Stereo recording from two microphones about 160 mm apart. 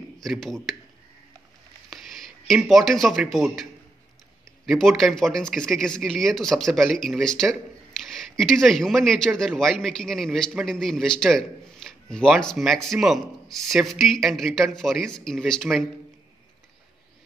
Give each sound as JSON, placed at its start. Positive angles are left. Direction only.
{"t": 0.2, "sound": "speech", "side_deg": 0}
{"t": 2.7, "sound": "speech", "side_deg": 0}
{"t": 4.6, "sound": "speech", "side_deg": 0}